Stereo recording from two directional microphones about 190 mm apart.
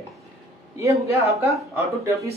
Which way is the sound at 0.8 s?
15° right (ahead or behind).